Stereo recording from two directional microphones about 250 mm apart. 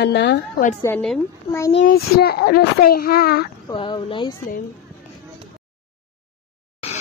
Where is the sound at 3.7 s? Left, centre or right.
Centre.